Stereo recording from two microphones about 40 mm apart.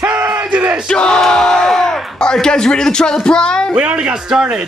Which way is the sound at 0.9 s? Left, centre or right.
Left.